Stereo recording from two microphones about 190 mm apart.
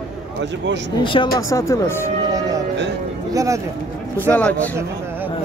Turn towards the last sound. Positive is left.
turn(degrees=10)  # may be behind; listen again after turning